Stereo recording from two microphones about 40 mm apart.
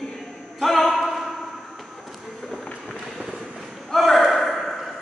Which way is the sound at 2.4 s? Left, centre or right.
Left.